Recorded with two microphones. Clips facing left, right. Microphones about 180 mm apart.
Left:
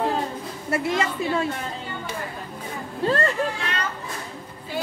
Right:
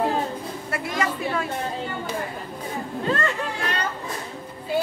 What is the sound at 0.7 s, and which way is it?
Speech, 25° left (ahead or behind).